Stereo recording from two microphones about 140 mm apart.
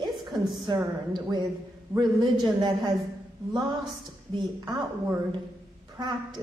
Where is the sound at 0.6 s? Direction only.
35° right (ahead or behind).